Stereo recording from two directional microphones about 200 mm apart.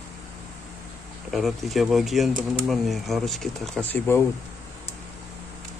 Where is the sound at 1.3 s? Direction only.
Centre (ahead or behind).